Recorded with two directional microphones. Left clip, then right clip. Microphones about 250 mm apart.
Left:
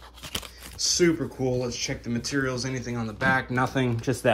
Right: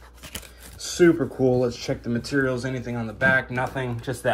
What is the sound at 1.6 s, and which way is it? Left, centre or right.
Speech, centre.